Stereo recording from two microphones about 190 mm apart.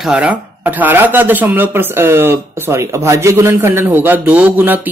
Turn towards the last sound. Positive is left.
turn(degrees=-10)  # may be behind; listen again after turning